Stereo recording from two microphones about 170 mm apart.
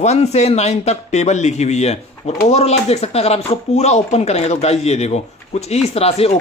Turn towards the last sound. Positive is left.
turn(degrees=35)  # may be behind; listen again after turning